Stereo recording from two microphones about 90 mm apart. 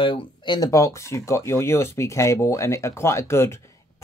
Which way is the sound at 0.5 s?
40° left (ahead or behind).